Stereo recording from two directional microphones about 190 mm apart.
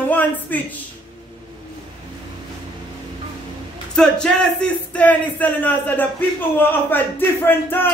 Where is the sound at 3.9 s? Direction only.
5° left (ahead or behind).